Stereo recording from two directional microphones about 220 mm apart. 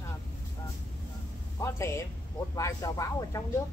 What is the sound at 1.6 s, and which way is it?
Speech, 15° left (ahead or behind).